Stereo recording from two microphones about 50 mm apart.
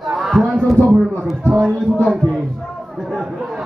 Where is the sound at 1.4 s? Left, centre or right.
Right.